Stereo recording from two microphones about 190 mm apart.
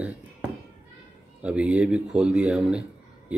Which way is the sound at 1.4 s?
5° right (ahead or behind).